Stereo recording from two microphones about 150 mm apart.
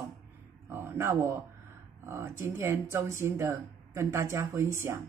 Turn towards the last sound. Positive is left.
turn(degrees=-20)  # may be behind; listen again after turning